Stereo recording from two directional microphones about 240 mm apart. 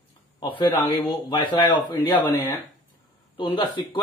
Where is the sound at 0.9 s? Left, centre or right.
Left.